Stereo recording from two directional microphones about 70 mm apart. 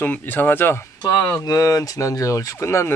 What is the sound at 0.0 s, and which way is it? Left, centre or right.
Speech, left.